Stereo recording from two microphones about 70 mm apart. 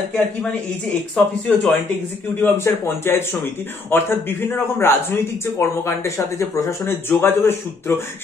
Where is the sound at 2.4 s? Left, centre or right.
Left.